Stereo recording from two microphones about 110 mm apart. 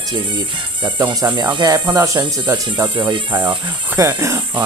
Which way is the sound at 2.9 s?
45° right (ahead or behind).